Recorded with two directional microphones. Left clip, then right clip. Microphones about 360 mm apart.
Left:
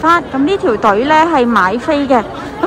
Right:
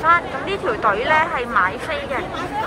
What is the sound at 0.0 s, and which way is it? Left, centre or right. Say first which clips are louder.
Speech: left 5 dB; centre.